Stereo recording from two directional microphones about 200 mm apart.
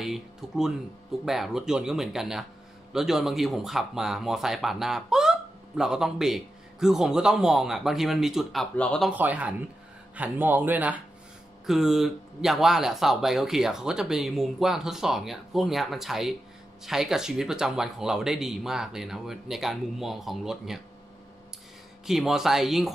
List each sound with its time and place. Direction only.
0.0 s speech: centre (ahead or behind)
9.1 s speech: 10° right (ahead or behind)
22.0 s speech: centre (ahead or behind)